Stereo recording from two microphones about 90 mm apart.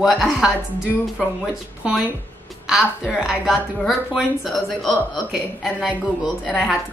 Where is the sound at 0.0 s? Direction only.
Centre (ahead or behind).